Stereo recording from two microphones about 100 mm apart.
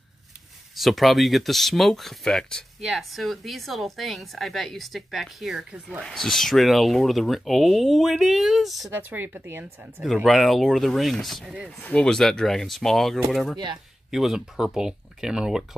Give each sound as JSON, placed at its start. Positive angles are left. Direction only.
{"t": 0.7, "sound": "speech", "side_deg": 0}
{"t": 8.9, "sound": "speech", "side_deg": -20}
{"t": 10.2, "sound": "speech", "side_deg": 0}
{"t": 11.8, "sound": "speech", "side_deg": 10}